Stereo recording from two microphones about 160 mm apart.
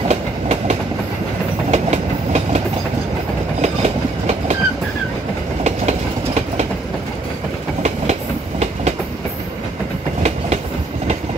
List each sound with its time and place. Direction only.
0.1 s train: 45° right (ahead or behind)
3.6 s train: 45° right (ahead or behind)
7.8 s train: 45° right (ahead or behind)